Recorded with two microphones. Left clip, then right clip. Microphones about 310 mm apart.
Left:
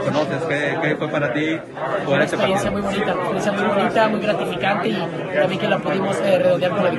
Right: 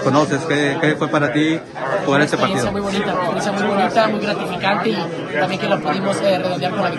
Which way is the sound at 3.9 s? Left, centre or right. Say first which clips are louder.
Right 1 dB; centre.